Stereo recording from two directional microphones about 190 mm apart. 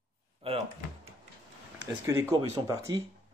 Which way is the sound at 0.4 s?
30° right (ahead or behind).